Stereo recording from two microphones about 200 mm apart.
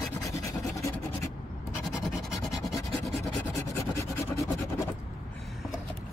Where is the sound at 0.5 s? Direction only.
15° left (ahead or behind).